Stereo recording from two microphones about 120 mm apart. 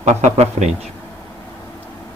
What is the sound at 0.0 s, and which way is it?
Speech, 75° right (ahead or behind).